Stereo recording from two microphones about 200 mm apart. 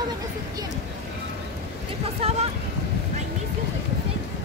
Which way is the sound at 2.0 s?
30° right (ahead or behind).